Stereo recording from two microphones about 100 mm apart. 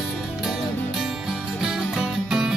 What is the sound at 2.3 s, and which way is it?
Music, 5° right (ahead or behind).